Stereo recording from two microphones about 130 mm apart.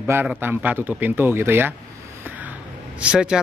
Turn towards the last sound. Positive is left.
turn(degrees=-5)  # may be behind; listen again after turning